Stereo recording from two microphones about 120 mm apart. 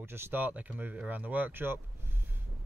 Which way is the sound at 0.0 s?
20° right (ahead or behind).